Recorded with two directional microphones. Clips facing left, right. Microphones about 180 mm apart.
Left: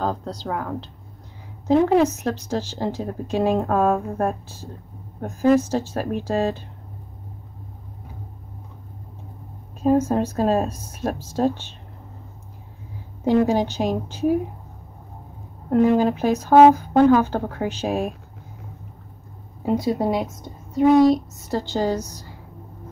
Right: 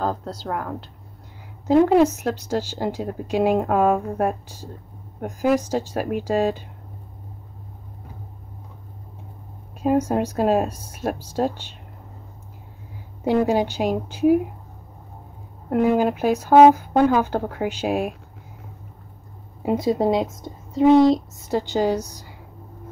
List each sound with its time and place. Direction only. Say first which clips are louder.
0.0 s a woman's voice: even; 5° right (ahead or behind)
9.8 s a woman's voice: left 1 dB; 10° right (ahead or behind)
13.2 s a woman's voice: left 1 dB; 10° right (ahead or behind)
15.7 s a woman's voice: left 2 dB; 10° right (ahead or behind)
19.6 s a child's voice: right 1 dB; 20° right (ahead or behind)